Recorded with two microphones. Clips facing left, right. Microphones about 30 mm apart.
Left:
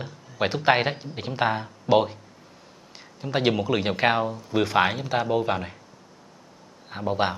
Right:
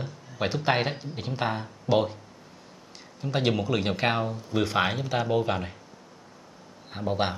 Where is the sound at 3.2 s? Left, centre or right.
Centre.